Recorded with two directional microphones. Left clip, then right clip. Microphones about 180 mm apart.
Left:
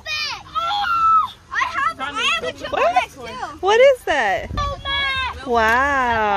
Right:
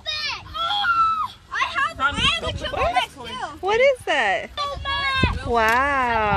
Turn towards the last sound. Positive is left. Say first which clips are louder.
# left 2 dB
turn(degrees=10)  # may be behind; listen again after turning